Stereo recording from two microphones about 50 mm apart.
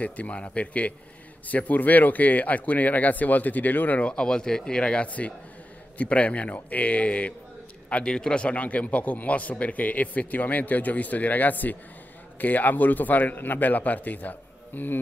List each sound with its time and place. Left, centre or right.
0.0 s a man's voice: left
4.0 s a man's voice: centre; by 15.0 s left